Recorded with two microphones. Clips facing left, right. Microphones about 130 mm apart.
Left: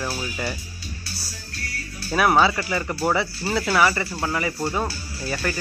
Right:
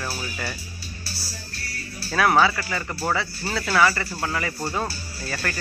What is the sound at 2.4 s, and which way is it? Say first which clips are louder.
Speech: left 1 dB; 20° left (ahead or behind).